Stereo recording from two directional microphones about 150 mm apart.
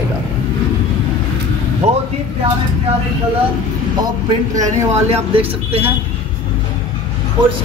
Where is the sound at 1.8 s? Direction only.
45° right (ahead or behind).